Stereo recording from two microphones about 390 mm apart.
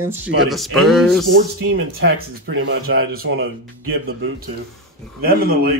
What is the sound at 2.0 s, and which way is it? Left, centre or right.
A man's voice, right.